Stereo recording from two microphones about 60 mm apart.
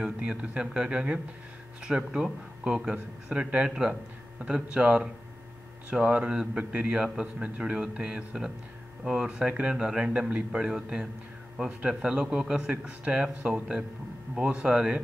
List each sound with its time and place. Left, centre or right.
0.0 s speech: centre